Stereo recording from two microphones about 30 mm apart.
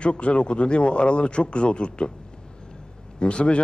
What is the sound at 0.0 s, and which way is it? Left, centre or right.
A man's voice, left.